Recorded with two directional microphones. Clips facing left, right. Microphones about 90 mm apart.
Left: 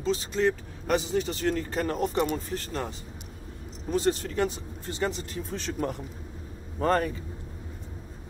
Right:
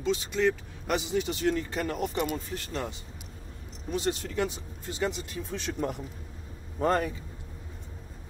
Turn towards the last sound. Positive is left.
turn(degrees=45)  # may be behind; listen again after turning